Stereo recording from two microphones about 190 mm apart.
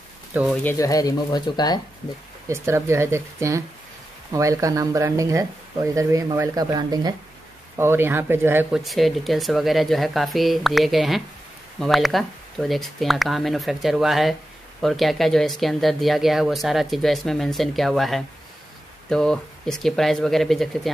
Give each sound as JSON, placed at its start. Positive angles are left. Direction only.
{"t": 0.3, "sound": "speech", "side_deg": -10}
{"t": 0.7, "sound": "speech", "side_deg": 15}
{"t": 2.4, "sound": "speech", "side_deg": -15}
{"t": 8.7, "sound": "speech", "side_deg": 0}